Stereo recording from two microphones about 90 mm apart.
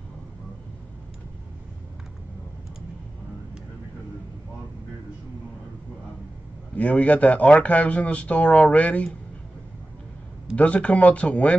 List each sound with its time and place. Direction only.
6.8 s speech: 15° left (ahead or behind)
10.5 s speech: 15° left (ahead or behind)